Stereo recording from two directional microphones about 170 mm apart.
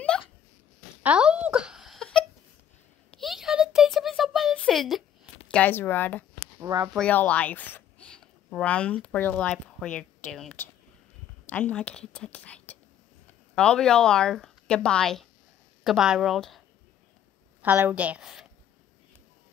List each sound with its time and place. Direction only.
0.1 s a sound: 5° left (ahead or behind)
1.0 s a sound: 5° right (ahead or behind)
5.5 s speech: 10° left (ahead or behind)
6.6 s speech: 20° right (ahead or behind)
6.9 s speech: 5° left (ahead or behind)
17.6 s a woman's voice: 10° right (ahead or behind)